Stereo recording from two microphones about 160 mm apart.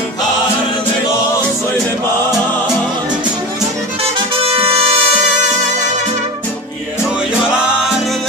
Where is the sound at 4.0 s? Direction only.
40° right (ahead or behind).